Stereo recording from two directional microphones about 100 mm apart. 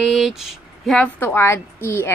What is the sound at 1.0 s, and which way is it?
A woman's voice, 25° left (ahead or behind).